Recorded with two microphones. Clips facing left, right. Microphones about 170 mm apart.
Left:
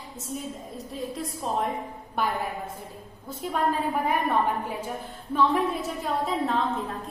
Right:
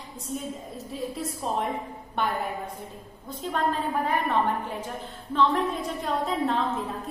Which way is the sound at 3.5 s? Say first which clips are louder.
Left 1 dB; 10° left (ahead or behind).